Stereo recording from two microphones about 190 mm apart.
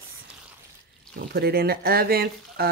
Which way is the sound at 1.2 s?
55° right (ahead or behind).